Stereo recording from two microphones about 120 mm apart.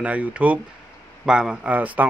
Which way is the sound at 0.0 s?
10° right (ahead or behind).